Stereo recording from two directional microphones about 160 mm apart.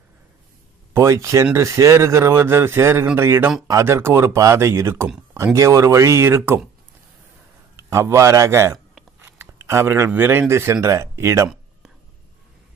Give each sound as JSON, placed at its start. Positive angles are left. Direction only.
{"t": 0.9, "sound": "speech", "side_deg": -20}
{"t": 5.0, "sound": "speech", "side_deg": -5}
{"t": 5.4, "sound": "speech", "side_deg": -20}
{"t": 7.9, "sound": "speech", "side_deg": -20}